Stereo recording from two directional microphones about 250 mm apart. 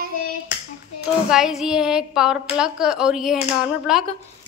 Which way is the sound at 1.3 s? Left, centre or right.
Centre.